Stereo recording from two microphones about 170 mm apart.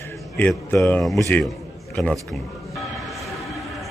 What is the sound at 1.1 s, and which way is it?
Speech, 15° left (ahead or behind).